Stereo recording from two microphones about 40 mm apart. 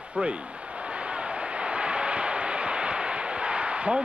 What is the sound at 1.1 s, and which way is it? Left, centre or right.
Vehicle, right.